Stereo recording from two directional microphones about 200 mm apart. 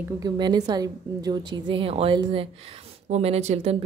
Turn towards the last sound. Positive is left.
turn(degrees=-30)  # may be behind; listen again after turning